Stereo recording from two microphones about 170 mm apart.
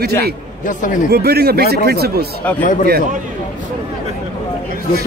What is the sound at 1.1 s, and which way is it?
Speech, 70° right (ahead or behind).